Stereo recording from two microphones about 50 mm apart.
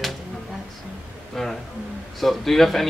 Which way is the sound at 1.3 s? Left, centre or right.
Centre.